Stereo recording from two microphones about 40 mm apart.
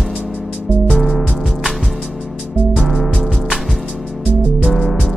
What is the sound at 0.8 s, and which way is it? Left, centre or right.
Music, centre.